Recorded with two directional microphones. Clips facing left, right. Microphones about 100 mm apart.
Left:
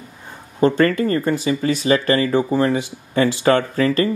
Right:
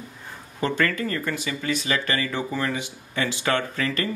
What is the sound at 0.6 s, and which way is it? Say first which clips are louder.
Speech: left 9 dB; 35° left (ahead or behind).